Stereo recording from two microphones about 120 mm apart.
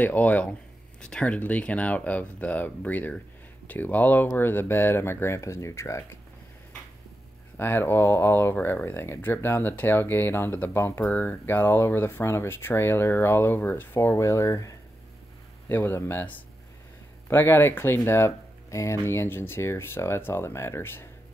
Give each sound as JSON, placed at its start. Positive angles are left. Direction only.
{"t": 0.0, "sound": "speech", "side_deg": 15}
{"t": 7.5, "sound": "speech", "side_deg": 20}